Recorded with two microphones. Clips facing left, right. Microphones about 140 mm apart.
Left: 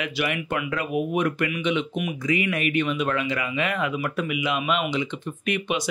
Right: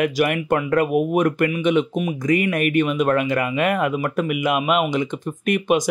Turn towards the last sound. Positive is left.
turn(degrees=-45)  # may be behind; listen again after turning